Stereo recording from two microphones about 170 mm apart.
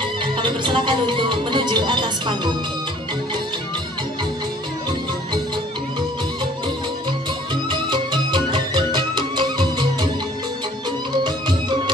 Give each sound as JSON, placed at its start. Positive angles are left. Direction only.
{"t": 0.0, "sound": "music", "side_deg": -30}
{"t": 7.9, "sound": "music", "side_deg": -25}